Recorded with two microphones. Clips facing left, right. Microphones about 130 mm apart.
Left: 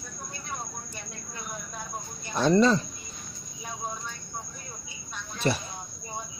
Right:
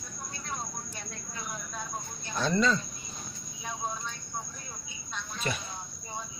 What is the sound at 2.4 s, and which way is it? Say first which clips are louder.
Speech: left 6 dB; 30° left (ahead or behind).